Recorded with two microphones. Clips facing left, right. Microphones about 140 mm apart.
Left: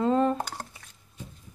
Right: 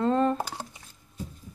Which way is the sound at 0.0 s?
5° left (ahead or behind).